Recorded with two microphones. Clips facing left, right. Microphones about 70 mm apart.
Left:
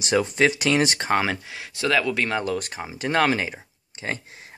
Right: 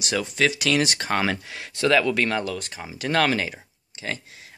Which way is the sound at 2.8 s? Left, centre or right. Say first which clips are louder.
Even; left.